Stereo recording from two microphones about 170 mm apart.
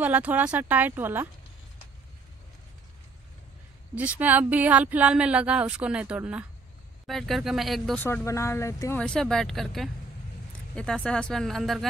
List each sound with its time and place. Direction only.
0.0 s speech: 10° right (ahead or behind)
3.9 s speech: 10° right (ahead or behind)
8.0 s speech: 15° left (ahead or behind)
9.0 s speech: 5° left (ahead or behind)